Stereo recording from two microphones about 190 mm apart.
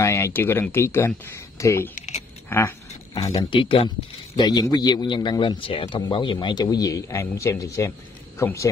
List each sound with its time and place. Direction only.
0.0 s speech: 15° left (ahead or behind)
3.2 s a man's voice: 25° left (ahead or behind)